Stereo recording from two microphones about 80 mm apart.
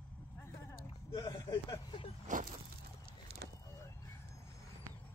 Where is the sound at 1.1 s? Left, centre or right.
Left.